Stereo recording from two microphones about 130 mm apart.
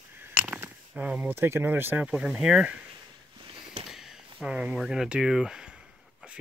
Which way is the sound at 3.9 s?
5° right (ahead or behind).